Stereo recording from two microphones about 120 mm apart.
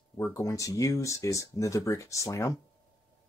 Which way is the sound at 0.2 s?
25° left (ahead or behind).